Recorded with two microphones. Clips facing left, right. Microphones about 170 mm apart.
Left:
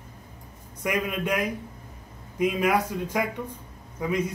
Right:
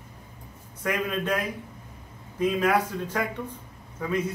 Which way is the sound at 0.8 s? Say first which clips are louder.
Even; 10° left (ahead or behind).